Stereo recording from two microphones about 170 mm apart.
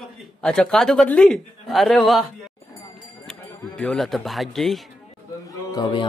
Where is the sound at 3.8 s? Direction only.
5° left (ahead or behind).